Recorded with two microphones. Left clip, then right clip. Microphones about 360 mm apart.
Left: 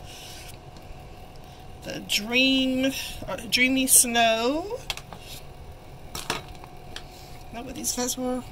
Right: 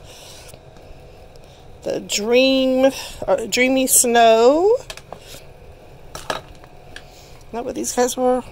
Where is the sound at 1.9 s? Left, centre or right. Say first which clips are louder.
Right 8 dB; centre.